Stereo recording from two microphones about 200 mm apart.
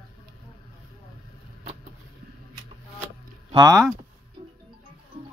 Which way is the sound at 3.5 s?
15° right (ahead or behind).